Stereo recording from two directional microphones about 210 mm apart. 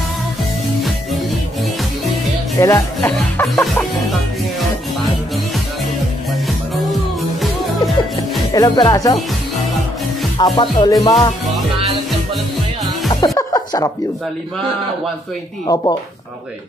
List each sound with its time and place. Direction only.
2.6 s speech: 10° left (ahead or behind)
6.7 s music: centre (ahead or behind)
8.5 s speech: 15° left (ahead or behind)
10.3 s music: 20° left (ahead or behind)
13.1 s music: 15° left (ahead or behind)
15.6 s music: 20° left (ahead or behind)